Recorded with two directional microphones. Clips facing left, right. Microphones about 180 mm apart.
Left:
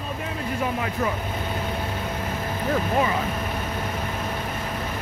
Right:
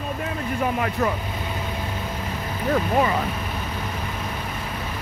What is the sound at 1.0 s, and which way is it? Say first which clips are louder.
Speech: right 2 dB; 60° right (ahead or behind).